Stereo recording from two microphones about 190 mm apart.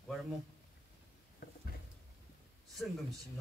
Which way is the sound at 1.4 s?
50° left (ahead or behind).